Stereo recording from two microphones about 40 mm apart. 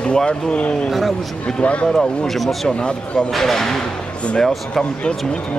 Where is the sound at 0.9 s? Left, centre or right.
Centre.